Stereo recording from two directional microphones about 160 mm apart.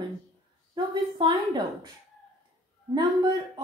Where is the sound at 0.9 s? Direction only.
30° right (ahead or behind).